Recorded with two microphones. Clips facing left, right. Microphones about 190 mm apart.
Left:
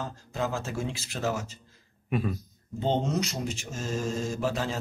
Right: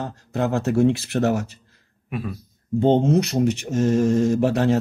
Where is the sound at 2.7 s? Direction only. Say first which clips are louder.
Right 10 dB; 55° right (ahead or behind).